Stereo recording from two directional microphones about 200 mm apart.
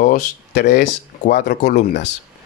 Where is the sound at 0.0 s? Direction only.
40° left (ahead or behind).